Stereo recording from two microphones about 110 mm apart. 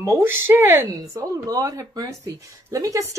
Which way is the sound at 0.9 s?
30° right (ahead or behind).